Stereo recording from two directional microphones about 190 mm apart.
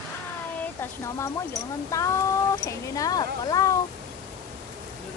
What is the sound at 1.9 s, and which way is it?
Speech, 15° left (ahead or behind).